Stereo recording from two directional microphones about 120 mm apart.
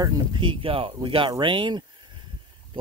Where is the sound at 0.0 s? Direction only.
40° right (ahead or behind).